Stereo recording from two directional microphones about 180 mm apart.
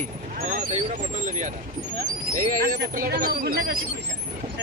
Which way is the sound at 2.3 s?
50° right (ahead or behind).